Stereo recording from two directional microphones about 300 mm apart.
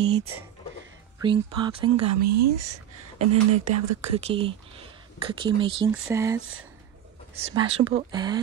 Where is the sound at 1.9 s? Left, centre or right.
Right.